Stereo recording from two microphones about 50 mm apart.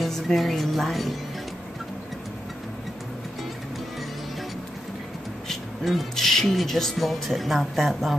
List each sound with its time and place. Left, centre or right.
0.0 s speech: centre
5.5 s speech: centre